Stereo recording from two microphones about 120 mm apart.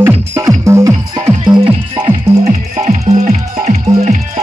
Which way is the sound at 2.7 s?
60° right (ahead or behind).